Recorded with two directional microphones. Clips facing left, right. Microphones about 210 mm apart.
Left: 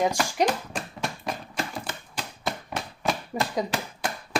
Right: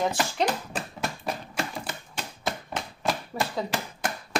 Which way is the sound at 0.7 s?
5° right (ahead or behind).